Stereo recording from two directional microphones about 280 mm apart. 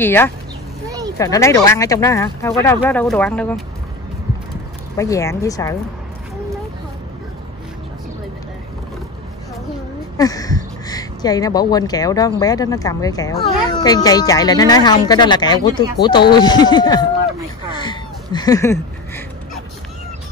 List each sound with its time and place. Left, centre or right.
0.0 s speech: centre
0.8 s a sound: centre
1.1 s speech: centre
4.9 s speech: centre
10.1 s speech: centre
17.7 s a sound: centre